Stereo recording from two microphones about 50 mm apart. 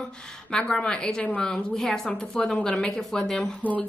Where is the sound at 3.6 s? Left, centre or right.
Left.